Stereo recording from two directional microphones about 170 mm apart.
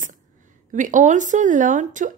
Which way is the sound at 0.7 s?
50° right (ahead or behind).